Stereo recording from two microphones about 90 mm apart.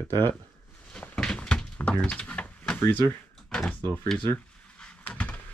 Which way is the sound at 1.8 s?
15° left (ahead or behind).